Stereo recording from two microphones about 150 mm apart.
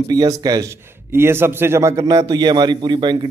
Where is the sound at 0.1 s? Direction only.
25° right (ahead or behind).